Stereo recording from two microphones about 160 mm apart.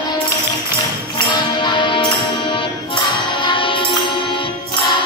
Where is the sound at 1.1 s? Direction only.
30° left (ahead or behind).